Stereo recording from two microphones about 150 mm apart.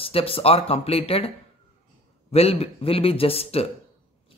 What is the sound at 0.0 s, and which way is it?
Speech, 40° left (ahead or behind).